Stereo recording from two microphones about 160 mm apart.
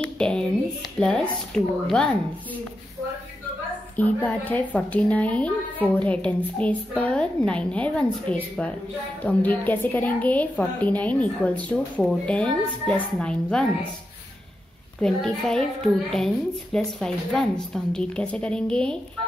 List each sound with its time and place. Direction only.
0.2 s a sound: 5° left (ahead or behind)
0.9 s a woman's voice: 5° left (ahead or behind)
3.9 s a woman's voice: 10° left (ahead or behind)
15.0 s a woman's voice: 5° left (ahead or behind)